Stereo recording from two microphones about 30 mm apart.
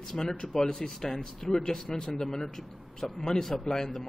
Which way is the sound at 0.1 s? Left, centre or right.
Centre.